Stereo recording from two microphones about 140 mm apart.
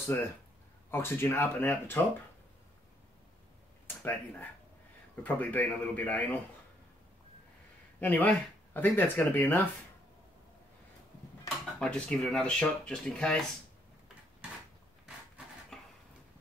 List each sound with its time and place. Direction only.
0.0 s speech: 15° left (ahead or behind)
3.8 s speech: 15° left (ahead or behind)
8.0 s speech: 10° left (ahead or behind)
11.8 s speech: 5° left (ahead or behind)
15.7 s a sound: centre (ahead or behind)